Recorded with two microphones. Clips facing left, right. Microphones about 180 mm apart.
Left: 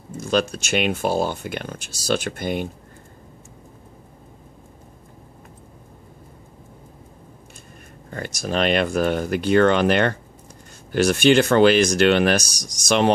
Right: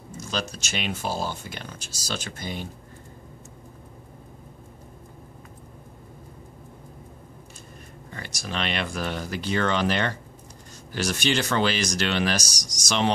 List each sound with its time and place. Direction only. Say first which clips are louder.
0.2 s speech: left 10 dB; 55° left (ahead or behind)
8.1 s speech: left 9 dB; 45° left (ahead or behind)